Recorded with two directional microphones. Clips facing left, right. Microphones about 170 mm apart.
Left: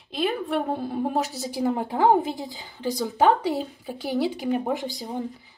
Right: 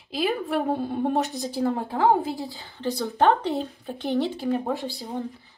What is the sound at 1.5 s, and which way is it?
Speech, 15° left (ahead or behind).